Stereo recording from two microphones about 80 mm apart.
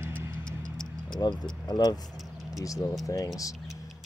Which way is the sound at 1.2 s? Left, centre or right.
Left.